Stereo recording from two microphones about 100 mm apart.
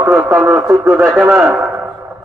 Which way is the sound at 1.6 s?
20° right (ahead or behind).